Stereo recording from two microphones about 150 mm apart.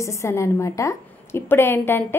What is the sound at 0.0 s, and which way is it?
A woman's voice, 20° left (ahead or behind).